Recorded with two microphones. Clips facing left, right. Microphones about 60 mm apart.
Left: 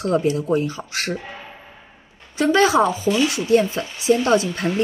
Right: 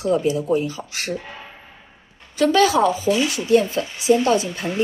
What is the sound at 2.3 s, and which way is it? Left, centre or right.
A woman's voice, left.